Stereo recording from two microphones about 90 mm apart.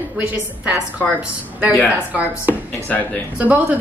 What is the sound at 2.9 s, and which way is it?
Speech, 20° left (ahead or behind).